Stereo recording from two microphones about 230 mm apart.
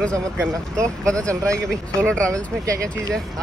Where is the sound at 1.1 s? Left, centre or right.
Centre.